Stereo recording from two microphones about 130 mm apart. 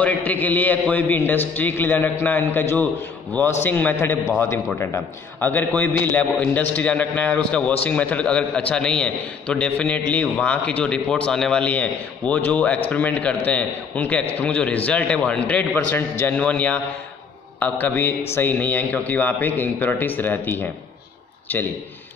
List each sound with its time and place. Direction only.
0.0 s a man's voice: 10° left (ahead or behind)